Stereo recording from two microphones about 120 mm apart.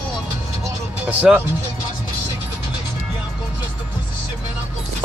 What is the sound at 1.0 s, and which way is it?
Speech, 10° right (ahead or behind).